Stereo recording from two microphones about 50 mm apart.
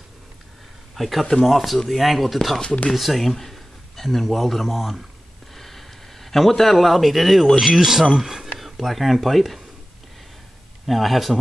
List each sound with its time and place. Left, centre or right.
0.9 s speech: centre
2.6 s speech: left
2.9 s a man's voice: centre
5.5 s a sound: centre
7.6 s speech: centre
10.9 s speech: centre